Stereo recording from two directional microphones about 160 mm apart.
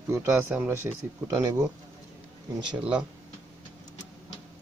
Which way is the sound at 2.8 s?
5° right (ahead or behind).